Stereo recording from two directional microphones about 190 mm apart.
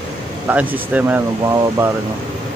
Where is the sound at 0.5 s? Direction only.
10° right (ahead or behind).